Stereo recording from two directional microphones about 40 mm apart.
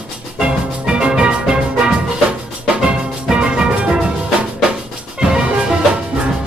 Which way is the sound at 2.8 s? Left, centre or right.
Right.